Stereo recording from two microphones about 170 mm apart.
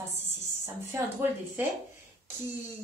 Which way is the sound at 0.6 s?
15° right (ahead or behind).